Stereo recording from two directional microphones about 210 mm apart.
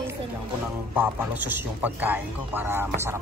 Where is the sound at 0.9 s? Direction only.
10° right (ahead or behind).